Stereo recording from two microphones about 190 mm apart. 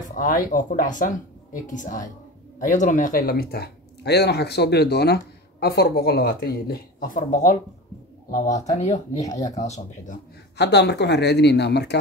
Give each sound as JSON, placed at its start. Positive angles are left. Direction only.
{"t": 0.1, "sound": "speech", "side_deg": 45}
{"t": 10.6, "sound": "speech", "side_deg": 65}